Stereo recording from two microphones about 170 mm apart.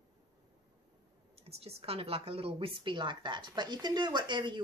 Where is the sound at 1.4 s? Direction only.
35° right (ahead or behind).